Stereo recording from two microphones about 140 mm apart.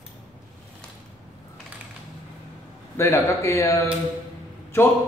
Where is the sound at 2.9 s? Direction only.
20° left (ahead or behind).